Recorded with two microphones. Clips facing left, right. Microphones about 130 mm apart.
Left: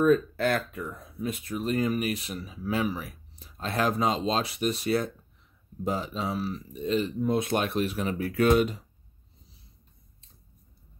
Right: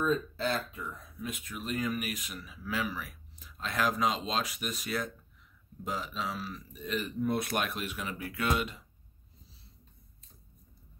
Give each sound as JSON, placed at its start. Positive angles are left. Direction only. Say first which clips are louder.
{"t": 0.0, "sound": "speech", "louder": "left 8 dB", "side_deg": 60}
{"t": 1.2, "sound": "speech", "louder": "left 8 dB", "side_deg": 35}